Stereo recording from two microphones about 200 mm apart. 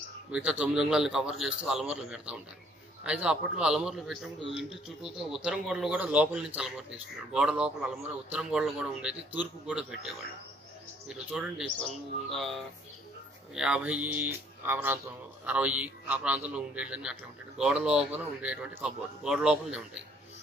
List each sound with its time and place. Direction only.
0.3 s a man's voice: 5° right (ahead or behind)